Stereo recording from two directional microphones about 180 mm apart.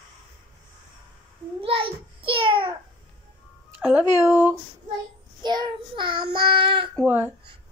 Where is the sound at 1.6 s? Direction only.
30° right (ahead or behind).